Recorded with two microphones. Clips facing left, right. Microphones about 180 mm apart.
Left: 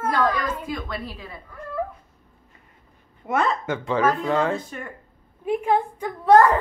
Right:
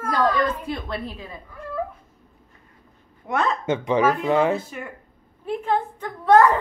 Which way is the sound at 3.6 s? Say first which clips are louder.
Right 2 dB; 20° right (ahead or behind).